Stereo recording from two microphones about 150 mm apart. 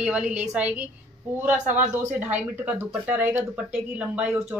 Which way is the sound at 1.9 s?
15° right (ahead or behind).